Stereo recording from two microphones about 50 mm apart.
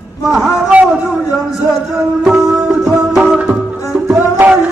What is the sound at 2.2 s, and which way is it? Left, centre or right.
Music, centre.